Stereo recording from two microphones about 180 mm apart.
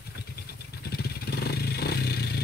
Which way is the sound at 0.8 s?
60° left (ahead or behind).